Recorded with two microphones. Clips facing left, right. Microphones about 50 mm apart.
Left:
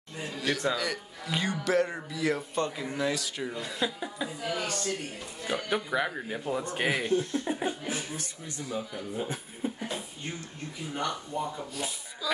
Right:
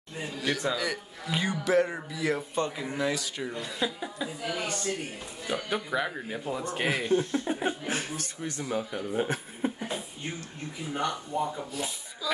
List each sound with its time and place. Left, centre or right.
0.2 s speech: centre
4.5 s speech: centre
5.4 s speech: centre
7.1 s speech: right
8.2 s speech: right
11.0 s speech: centre